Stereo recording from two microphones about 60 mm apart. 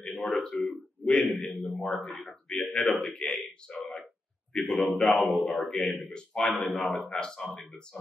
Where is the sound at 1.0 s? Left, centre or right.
Centre.